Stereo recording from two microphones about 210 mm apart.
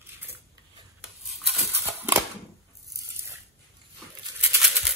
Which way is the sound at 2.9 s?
15° right (ahead or behind).